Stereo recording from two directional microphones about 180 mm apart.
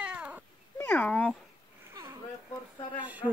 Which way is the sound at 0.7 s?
10° left (ahead or behind).